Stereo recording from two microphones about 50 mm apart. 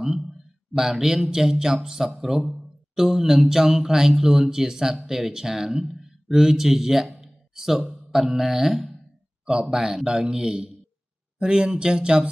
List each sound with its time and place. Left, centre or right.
0.0 s a sound: centre
0.7 s a man's voice: centre
7.9 s music: centre
9.5 s a man's voice: centre